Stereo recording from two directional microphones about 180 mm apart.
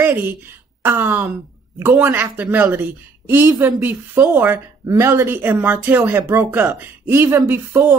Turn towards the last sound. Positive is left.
turn(degrees=-10)  # may be behind; listen again after turning